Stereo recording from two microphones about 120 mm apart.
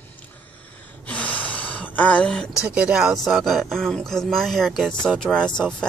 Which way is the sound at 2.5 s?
10° right (ahead or behind).